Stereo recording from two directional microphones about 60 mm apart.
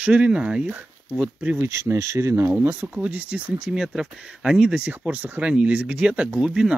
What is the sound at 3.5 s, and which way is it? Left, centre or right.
Speech, centre.